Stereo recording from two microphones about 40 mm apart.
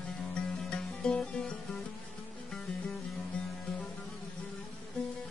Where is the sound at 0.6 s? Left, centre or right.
Left.